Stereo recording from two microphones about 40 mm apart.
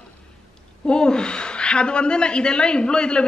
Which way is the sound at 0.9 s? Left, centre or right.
Left.